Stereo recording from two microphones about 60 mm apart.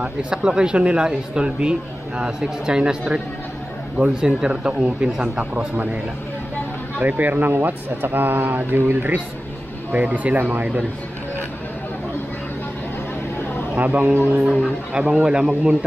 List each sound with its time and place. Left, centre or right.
0.0 s speech: centre
7.0 s speech: right
9.9 s speech: right
13.7 s speech: right
14.4 s speech: centre